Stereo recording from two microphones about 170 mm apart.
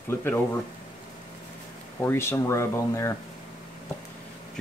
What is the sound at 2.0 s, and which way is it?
Speech, 15° left (ahead or behind).